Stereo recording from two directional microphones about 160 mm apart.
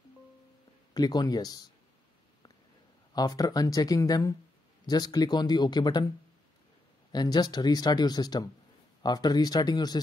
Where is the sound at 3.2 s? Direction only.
25° left (ahead or behind).